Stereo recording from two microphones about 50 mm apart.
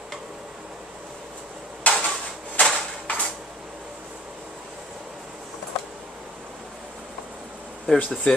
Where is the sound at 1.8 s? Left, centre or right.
Left.